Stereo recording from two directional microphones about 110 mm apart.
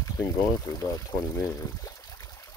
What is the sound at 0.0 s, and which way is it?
Speech, 30° left (ahead or behind).